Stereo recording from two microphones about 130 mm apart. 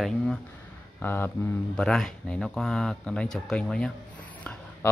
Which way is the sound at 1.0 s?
15° left (ahead or behind).